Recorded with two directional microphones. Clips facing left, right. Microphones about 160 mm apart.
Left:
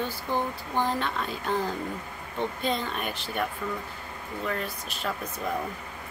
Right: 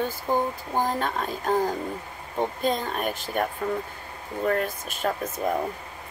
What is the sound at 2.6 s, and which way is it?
Speech, 45° right (ahead or behind).